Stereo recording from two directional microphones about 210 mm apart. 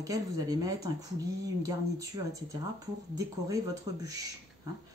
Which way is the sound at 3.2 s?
15° right (ahead or behind).